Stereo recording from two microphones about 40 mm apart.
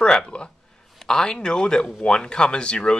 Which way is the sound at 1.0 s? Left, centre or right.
Centre.